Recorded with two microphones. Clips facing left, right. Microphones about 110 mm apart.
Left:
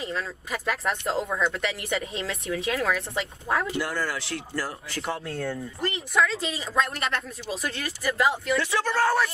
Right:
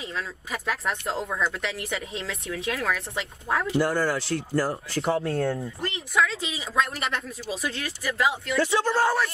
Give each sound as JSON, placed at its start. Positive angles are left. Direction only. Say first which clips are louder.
{"t": 0.0, "sound": "speech", "louder": "left 2 dB", "side_deg": 0}
{"t": 3.7, "sound": "speech", "louder": "right 5 dB", "side_deg": -35}
{"t": 5.2, "sound": "speech", "louder": "right 5 dB", "side_deg": 0}
{"t": 8.5, "sound": "speech", "louder": "right 3 dB", "side_deg": -25}